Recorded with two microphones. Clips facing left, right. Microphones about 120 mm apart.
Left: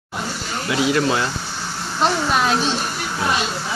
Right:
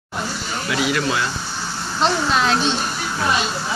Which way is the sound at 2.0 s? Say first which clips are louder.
Even; 5° left (ahead or behind).